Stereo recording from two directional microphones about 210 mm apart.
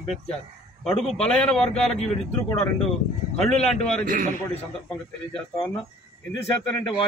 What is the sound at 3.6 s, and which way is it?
Speech, 30° left (ahead or behind).